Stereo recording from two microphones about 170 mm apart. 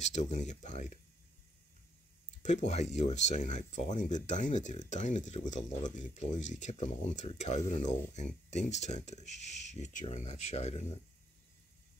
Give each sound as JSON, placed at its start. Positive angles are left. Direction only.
{"t": 0.0, "sound": "speech", "side_deg": 45}
{"t": 2.4, "sound": "speech", "side_deg": 40}